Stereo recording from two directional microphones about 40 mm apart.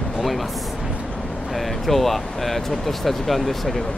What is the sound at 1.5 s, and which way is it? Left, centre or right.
Speech, centre.